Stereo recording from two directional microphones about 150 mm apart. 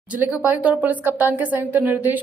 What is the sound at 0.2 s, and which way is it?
A woman's voice, 10° right (ahead or behind).